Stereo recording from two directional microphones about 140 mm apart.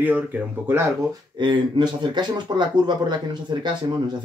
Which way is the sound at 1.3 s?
35° right (ahead or behind).